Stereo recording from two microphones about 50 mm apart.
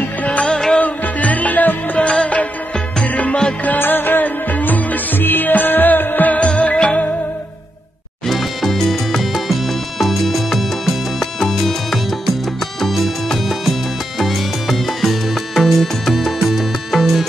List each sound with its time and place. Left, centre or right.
0.2 s music: left
0.5 s music: centre
0.7 s music: left
2.0 s music: left
3.6 s music: left; by 7.1 s centre
8.3 s salsa music: centre
12.8 s music: centre